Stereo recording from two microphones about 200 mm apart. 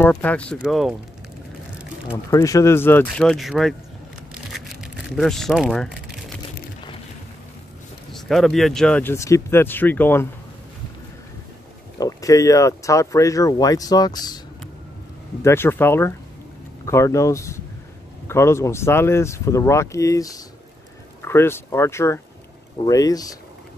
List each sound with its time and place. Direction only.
0.0 s speech: 10° left (ahead or behind)
2.3 s speech: 15° left (ahead or behind); by 3.7 s centre (ahead or behind)
4.3 s a sound: centre (ahead or behind)
8.1 s speech: centre (ahead or behind)
12.0 s speech: 15° left (ahead or behind)
15.4 s speech: 10° left (ahead or behind)